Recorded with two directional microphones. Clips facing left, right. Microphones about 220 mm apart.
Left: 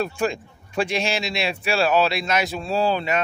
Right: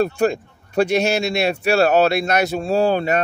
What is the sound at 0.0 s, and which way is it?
A man's voice, 40° right (ahead or behind).